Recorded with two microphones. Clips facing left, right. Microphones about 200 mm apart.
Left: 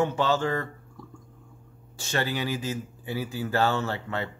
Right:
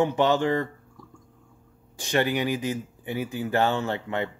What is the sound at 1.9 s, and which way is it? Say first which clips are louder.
Speech: right 5 dB; 15° right (ahead or behind).